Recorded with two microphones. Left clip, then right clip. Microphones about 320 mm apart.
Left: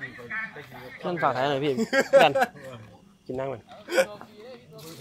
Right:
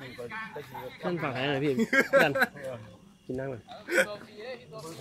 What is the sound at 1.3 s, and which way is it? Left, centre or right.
Speech, left.